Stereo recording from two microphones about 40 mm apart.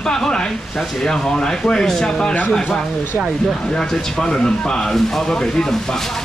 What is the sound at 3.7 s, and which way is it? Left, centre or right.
Speech, centre.